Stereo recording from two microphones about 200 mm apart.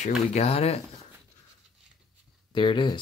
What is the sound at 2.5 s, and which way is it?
Speech, 25° left (ahead or behind).